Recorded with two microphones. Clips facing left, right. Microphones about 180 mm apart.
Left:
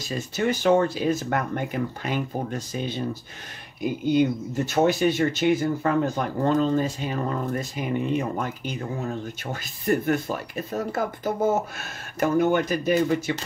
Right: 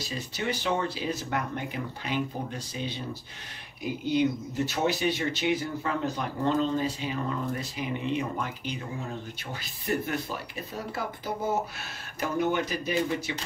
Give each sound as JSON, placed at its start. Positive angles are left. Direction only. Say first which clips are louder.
{"t": 0.4, "sound": "speech", "louder": "left 9 dB", "side_deg": 50}
{"t": 10.0, "sound": "speech", "louder": "left 8 dB", "side_deg": 50}